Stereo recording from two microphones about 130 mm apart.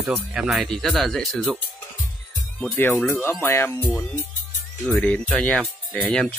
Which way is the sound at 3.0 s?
15° left (ahead or behind).